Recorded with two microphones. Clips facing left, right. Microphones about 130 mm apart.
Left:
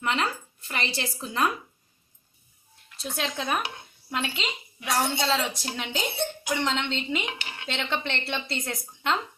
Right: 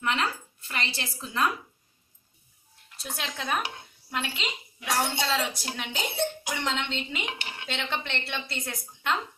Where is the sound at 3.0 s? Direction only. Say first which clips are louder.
Left 5 dB; 20° left (ahead or behind).